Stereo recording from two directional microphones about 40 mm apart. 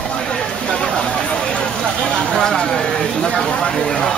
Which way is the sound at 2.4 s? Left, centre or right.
Centre.